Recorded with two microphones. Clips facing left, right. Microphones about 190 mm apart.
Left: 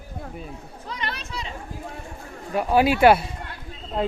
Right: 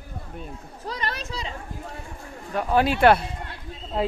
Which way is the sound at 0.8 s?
40° right (ahead or behind).